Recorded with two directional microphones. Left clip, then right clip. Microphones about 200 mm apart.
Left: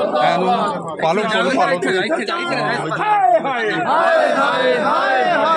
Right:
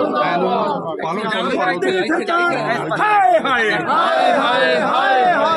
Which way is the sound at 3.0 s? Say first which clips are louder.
Right 1 dB; 45° right (ahead or behind).